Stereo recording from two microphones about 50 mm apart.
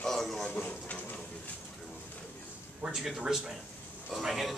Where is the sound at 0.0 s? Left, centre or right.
Centre.